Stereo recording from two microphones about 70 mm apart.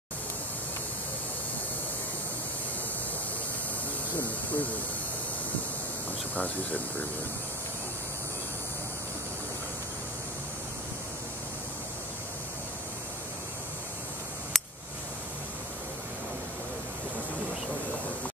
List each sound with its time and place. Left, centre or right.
4.2 s speech: left
6.3 s speech: left
14.5 s a sound: centre